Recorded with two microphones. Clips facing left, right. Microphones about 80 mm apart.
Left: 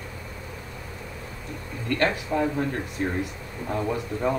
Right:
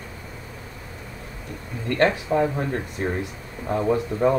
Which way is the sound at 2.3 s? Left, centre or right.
Right.